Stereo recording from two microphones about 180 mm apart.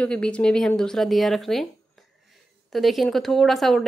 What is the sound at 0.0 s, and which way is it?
A woman's voice, 5° left (ahead or behind).